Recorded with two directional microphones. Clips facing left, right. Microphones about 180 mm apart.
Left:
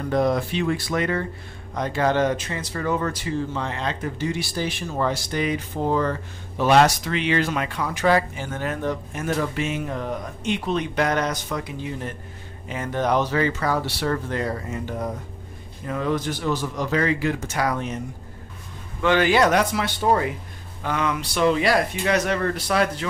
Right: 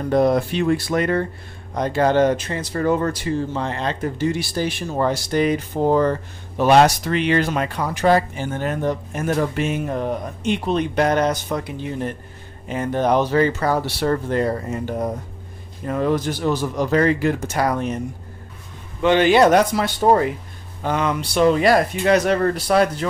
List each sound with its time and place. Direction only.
0.1 s speech: 35° right (ahead or behind)
0.5 s speech: 50° right (ahead or behind)
1.7 s speech: 35° right (ahead or behind)
12.6 s speech: 35° right (ahead or behind)
18.9 s speech: 20° right (ahead or behind)
19.5 s speech: 40° right (ahead or behind)